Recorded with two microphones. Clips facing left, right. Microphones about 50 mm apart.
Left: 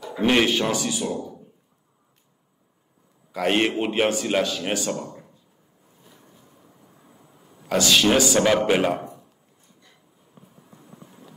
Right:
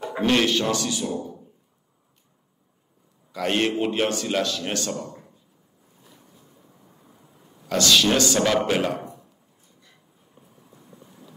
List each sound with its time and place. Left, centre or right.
0.2 s speech: centre
1.1 s speech: right
3.3 s a man's voice: centre
6.1 s boat: left
7.2 s a sound: centre
8.6 s speech: centre
11.0 s a sound: left